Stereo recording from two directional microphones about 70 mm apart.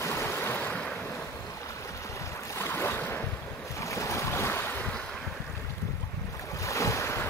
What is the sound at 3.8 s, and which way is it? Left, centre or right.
Waves, left.